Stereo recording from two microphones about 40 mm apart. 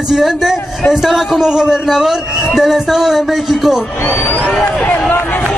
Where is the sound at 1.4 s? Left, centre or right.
Centre.